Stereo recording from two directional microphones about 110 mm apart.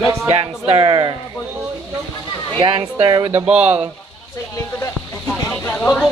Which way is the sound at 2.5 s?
50° right (ahead or behind).